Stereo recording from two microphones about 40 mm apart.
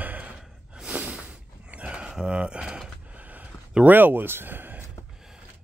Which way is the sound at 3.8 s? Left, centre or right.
Right.